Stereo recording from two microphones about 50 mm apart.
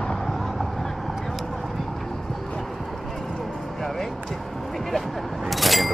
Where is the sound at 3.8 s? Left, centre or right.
Centre.